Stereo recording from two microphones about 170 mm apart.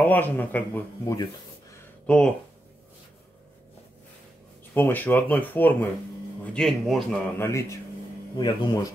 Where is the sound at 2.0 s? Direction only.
5° left (ahead or behind).